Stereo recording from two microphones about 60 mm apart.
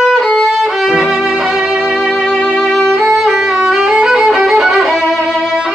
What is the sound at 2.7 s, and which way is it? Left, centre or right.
Violin, centre.